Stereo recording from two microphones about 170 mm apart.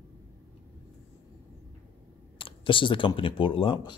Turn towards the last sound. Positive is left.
turn(degrees=30)  # may be behind; listen again after turning